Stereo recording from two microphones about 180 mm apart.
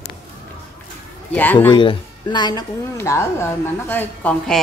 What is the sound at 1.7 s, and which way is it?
A woman's voice, 25° left (ahead or behind).